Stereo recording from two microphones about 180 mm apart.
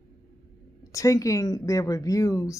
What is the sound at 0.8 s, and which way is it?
Speech, 20° left (ahead or behind).